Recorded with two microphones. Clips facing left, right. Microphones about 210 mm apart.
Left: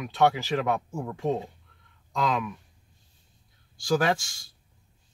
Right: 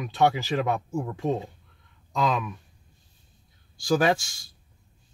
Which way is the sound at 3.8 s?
15° right (ahead or behind).